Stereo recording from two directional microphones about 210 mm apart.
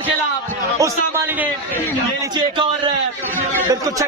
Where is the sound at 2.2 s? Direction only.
20° right (ahead or behind).